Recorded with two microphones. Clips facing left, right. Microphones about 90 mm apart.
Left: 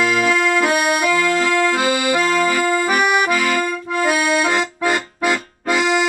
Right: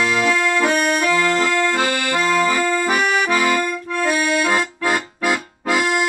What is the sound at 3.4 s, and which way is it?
Accordion, 15° right (ahead or behind).